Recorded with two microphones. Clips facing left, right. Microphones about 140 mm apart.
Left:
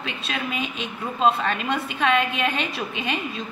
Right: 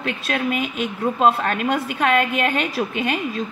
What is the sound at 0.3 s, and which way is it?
A woman's voice, 55° right (ahead or behind).